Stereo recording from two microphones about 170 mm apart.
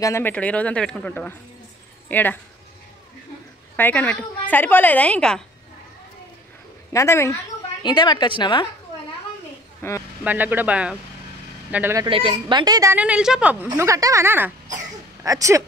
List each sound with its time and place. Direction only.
0.0 s a woman's voice: 15° left (ahead or behind)
3.7 s a woman's voice: 10° left (ahead or behind)
6.9 s a woman's voice: 15° left (ahead or behind)
9.8 s a man's voice: 15° left (ahead or behind)
10.2 s speech: 10° right (ahead or behind)
12.1 s a woman's voice: 30° right (ahead or behind)
12.9 s speech: 5° right (ahead or behind)
13.7 s a woman's voice: 20° right (ahead or behind)